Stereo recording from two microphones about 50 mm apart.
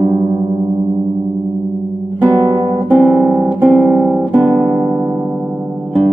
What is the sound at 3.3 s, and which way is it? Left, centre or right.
Guitar, right.